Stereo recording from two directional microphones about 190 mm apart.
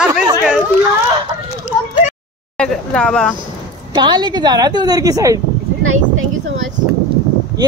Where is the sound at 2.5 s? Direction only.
5° left (ahead or behind).